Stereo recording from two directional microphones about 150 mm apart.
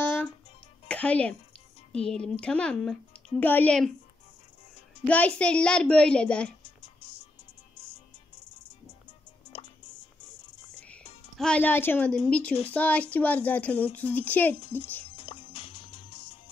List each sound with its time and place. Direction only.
0.0 s music: 15° left (ahead or behind)
1.9 s a child's voice: 5° left (ahead or behind)
5.0 s a child's voice: 10° left (ahead or behind)
11.3 s a child's voice: 5° left (ahead or behind)
15.1 s music: 40° left (ahead or behind)